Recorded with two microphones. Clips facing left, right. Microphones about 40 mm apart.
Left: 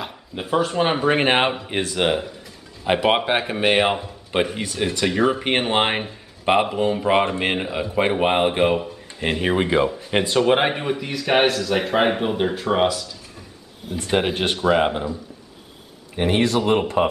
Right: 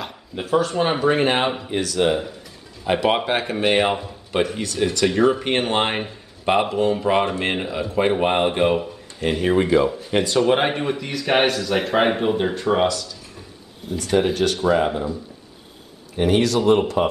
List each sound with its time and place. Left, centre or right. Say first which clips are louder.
0.5 s speech: even; centre
1.1 s speech: left 1 dB; left
2.8 s speech: left 1 dB; centre
9.2 s speech: right 2 dB; left
13.9 s speech: right 2 dB; left
16.2 s speech: right 1 dB; left